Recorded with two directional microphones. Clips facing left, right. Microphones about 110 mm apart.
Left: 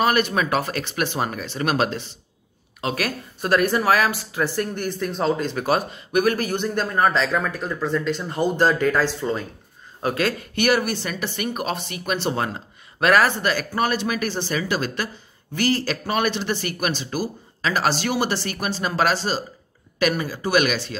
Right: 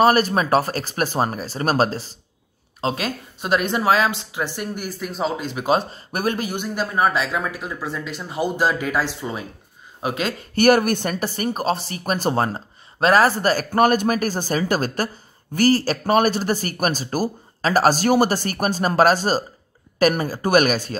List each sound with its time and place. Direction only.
0.0 s speech: 35° right (ahead or behind)
2.8 s speech: 25° right (ahead or behind)
4.6 s speech: 10° right (ahead or behind)
5.8 s speech: 35° right (ahead or behind)
6.3 s speech: 15° right (ahead or behind)
10.5 s speech: 45° right (ahead or behind)